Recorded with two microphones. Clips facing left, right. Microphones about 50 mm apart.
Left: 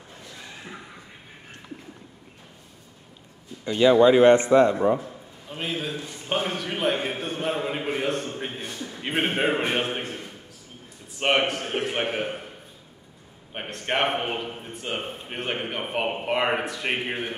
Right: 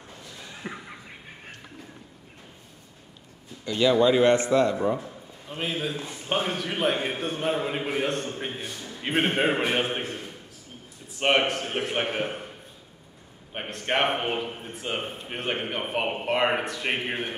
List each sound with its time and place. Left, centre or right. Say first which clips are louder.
0.7 s a sound: right 6 dB; right
3.6 s a man's voice: left 4 dB; left
5.5 s a man's voice: even; centre
13.5 s a man's voice: even; centre